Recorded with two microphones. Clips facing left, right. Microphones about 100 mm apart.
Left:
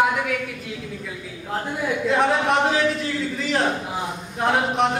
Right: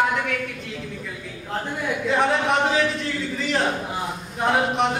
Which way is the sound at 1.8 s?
Centre (ahead or behind).